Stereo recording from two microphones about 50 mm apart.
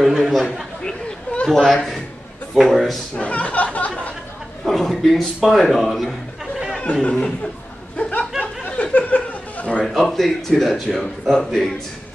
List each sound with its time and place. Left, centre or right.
0.0 s a man's voice: centre
3.2 s a sound: left
4.6 s chuckle: centre
5.4 s a man's voice: centre
6.8 s speech: left
8.0 s a sound: left
10.0 s a man's voice: centre